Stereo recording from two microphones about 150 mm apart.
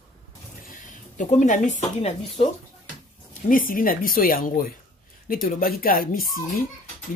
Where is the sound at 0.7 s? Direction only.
55° left (ahead or behind).